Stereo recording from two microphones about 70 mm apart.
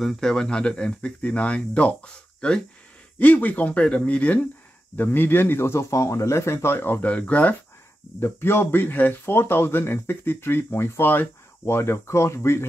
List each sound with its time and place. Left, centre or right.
0.0 s speech: centre
8.2 s speech: left